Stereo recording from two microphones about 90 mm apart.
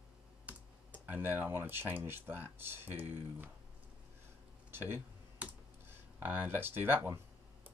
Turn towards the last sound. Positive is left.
turn(degrees=-25)  # may be behind; listen again after turning